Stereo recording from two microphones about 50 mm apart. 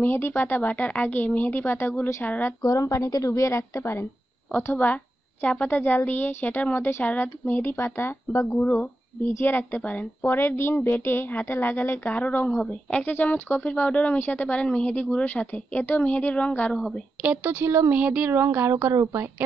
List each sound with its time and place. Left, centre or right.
0.0 s a woman's voice: left
2.8 s a woman's voice: left
4.7 s a woman's voice: left
7.7 s speech: left
8.5 s a woman's voice: left
9.8 s a woman's voice: left
10.2 s a woman's voice: left
13.1 s a woman's voice: left
17.2 s speech: right
18.3 s speech: right
18.7 s speech: right